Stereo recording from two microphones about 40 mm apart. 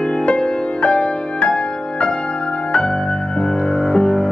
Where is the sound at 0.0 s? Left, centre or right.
Left.